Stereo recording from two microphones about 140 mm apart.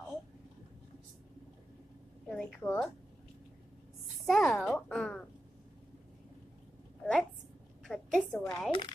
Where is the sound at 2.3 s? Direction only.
5° left (ahead or behind).